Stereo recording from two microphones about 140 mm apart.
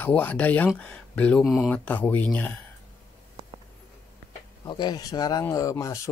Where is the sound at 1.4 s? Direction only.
Centre (ahead or behind).